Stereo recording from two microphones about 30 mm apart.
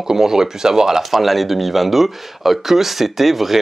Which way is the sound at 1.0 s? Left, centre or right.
Centre.